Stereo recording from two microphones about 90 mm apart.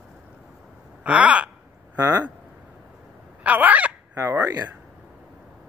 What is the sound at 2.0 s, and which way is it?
Speech, 40° right (ahead or behind).